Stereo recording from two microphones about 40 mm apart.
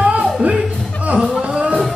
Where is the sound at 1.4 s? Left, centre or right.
Right.